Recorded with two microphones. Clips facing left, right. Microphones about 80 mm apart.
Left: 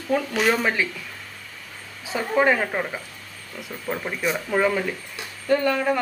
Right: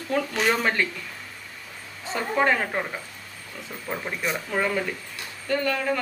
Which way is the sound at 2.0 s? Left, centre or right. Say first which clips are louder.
Left 3 dB; centre.